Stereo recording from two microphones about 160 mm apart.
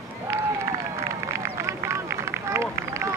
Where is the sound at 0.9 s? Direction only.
15° right (ahead or behind).